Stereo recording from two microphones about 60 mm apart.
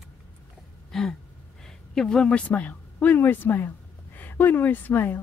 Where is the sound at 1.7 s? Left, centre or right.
Centre.